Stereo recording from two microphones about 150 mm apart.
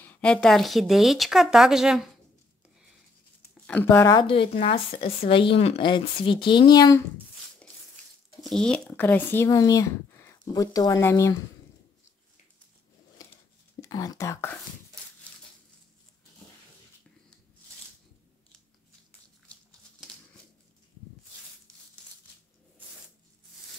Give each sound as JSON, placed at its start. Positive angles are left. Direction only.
{"t": 0.0, "sound": "speech", "side_deg": 5}
{"t": 3.6, "sound": "speech", "side_deg": 10}
{"t": 4.1, "sound": "speech", "side_deg": 35}
{"t": 8.5, "sound": "speech", "side_deg": 5}
{"t": 13.7, "sound": "speech", "side_deg": 25}